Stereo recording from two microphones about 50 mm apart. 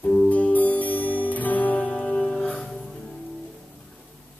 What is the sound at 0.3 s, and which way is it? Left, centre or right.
Music, left.